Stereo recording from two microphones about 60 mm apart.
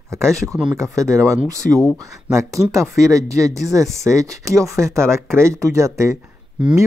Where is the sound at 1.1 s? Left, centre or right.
Right.